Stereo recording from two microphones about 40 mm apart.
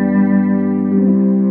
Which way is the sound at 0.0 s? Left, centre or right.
Right.